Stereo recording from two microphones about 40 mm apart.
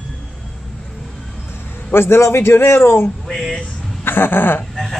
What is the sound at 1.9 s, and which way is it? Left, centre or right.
A man's voice, left.